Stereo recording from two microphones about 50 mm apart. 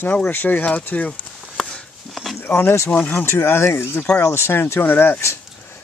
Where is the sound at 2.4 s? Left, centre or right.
Left.